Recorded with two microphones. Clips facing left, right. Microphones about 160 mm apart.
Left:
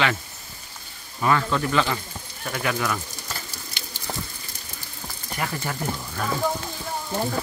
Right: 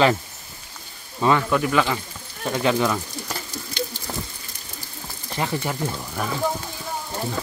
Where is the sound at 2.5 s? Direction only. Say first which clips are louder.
Right 5 dB; 25° right (ahead or behind).